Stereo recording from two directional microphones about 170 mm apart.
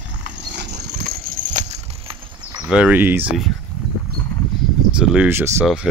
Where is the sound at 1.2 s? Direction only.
55° right (ahead or behind); by 2.4 s 35° right (ahead or behind).